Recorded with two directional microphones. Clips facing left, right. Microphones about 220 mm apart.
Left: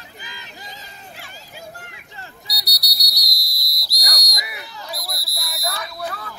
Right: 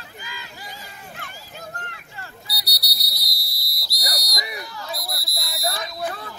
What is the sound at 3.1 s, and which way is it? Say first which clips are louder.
Fire alarm: left 1 dB; 55° right (ahead or behind).